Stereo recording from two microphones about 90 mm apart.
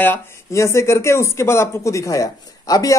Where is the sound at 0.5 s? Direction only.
30° left (ahead or behind).